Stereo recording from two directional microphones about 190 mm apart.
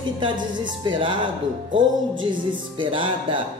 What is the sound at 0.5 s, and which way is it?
Music, 25° right (ahead or behind).